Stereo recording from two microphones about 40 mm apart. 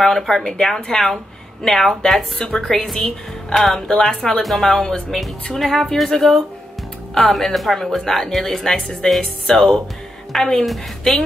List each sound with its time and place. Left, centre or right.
0.0 s speech: centre
3.0 s a woman's voice: left
3.6 s speech: centre
4.8 s speech: centre
5.5 s speech: centre
10.6 s speech: centre